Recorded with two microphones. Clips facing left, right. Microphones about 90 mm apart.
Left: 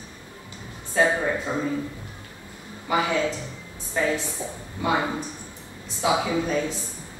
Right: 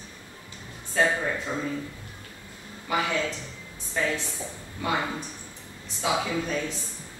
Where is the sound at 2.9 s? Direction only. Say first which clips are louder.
Left 4 dB; 10° left (ahead or behind).